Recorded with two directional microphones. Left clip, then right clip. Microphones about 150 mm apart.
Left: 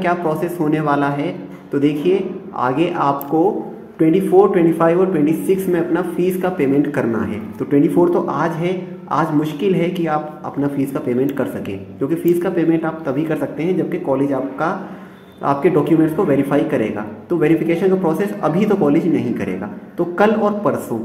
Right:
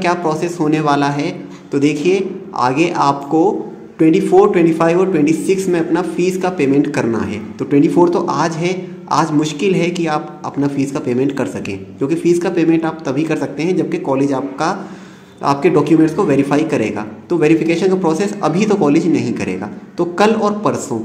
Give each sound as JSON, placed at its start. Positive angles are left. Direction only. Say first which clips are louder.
{"t": 0.0, "sound": "a man's voice", "louder": "right 2 dB", "side_deg": -15}
{"t": 4.3, "sound": "a man's voice", "louder": "even", "side_deg": -30}
{"t": 15.4, "sound": "a man's voice", "louder": "right 2 dB", "side_deg": -25}